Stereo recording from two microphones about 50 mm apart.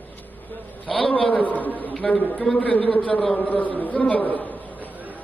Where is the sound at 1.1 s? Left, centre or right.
Left.